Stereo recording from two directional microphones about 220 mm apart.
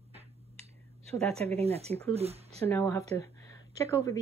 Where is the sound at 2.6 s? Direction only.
15° left (ahead or behind).